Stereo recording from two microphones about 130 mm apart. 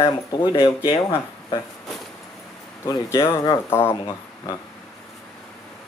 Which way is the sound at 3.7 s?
20° left (ahead or behind).